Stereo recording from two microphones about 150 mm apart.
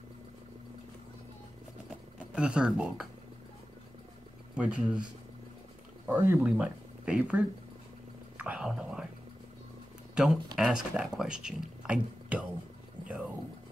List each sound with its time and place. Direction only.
2.3 s speech: 5° right (ahead or behind)
4.6 s speech: 5° right (ahead or behind)
6.0 s speech: 20° right (ahead or behind)
6.4 s speech: 5° right (ahead or behind)
8.4 s whispering: 10° right (ahead or behind)
10.1 s speech: centre (ahead or behind)